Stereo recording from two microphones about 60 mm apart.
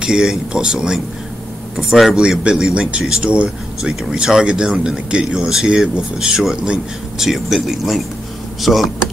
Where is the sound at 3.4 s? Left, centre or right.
Centre.